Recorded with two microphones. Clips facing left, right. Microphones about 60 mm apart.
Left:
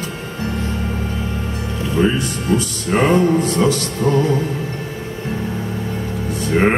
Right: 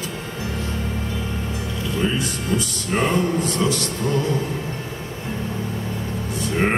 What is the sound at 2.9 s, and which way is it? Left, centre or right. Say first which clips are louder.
Music: left 6 dB; left.